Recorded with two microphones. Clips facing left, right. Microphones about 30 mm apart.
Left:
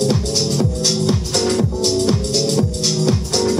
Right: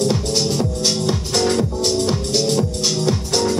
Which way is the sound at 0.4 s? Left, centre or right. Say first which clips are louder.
Left 1 dB; centre.